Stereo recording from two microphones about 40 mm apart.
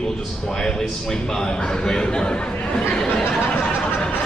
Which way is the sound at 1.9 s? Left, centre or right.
Centre.